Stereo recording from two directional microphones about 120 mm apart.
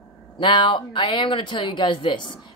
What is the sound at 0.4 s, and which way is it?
Speech, 40° left (ahead or behind).